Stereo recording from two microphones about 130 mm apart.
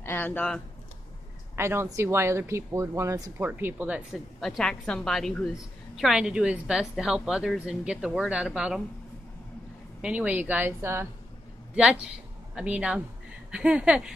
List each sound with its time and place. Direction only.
0.0 s speech: 15° left (ahead or behind)
1.6 s speech: 20° right (ahead or behind)
4.1 s a woman's voice: 5° left (ahead or behind)
10.0 s a woman's voice: 10° right (ahead or behind)
11.7 s a woman's voice: 5° right (ahead or behind)